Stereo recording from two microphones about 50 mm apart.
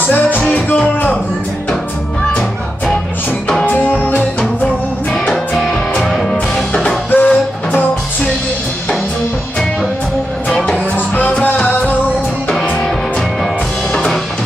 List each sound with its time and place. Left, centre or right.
0.1 s music: left
3.6 s music: left
5.6 s music: centre
6.5 s music: centre
7.1 s music: left
11.0 s music: left